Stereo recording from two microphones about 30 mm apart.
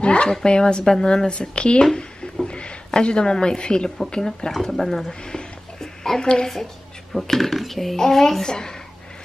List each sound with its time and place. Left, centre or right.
0.0 s speech: left
0.3 s speech: left
4.5 s speech: centre
5.8 s a sound: centre
6.5 s speech: centre; by 8.7 s left